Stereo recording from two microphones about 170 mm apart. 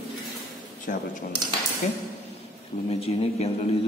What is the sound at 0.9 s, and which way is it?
Speech, 50° left (ahead or behind).